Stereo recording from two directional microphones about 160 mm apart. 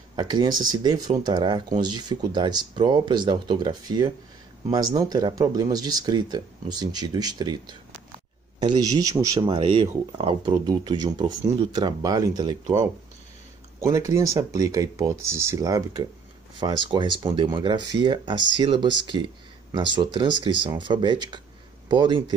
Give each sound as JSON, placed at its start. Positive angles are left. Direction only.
{"t": 0.1, "sound": "speech", "side_deg": -25}
{"t": 9.6, "sound": "speech", "side_deg": -35}
{"t": 13.7, "sound": "speech", "side_deg": -20}